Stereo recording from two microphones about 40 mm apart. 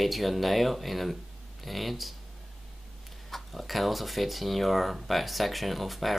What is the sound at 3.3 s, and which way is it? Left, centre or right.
Speech, centre.